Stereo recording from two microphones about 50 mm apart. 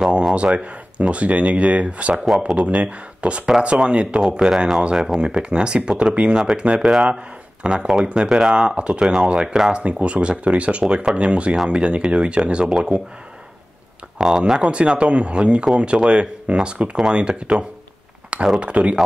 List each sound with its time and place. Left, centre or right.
0.3 s speech: right
2.2 s speech: centre
2.5 s speech: right
9.0 s speech: centre
9.8 s speech: right
14.1 s speech: centre
14.6 s speech: right